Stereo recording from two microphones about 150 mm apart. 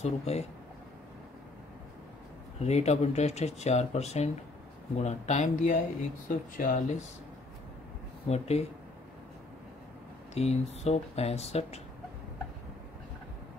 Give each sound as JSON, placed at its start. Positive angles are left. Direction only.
{"t": 0.0, "sound": "speech", "side_deg": 45}
{"t": 2.6, "sound": "speech", "side_deg": 45}
{"t": 8.3, "sound": "speech", "side_deg": 45}
{"t": 10.3, "sound": "speech", "side_deg": 45}